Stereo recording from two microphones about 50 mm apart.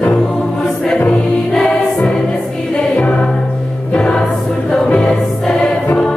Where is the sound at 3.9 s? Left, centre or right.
Centre.